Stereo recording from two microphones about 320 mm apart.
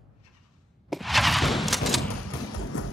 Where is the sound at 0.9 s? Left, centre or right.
Centre.